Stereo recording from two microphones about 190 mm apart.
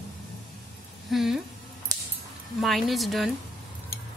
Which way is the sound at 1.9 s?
20° right (ahead or behind).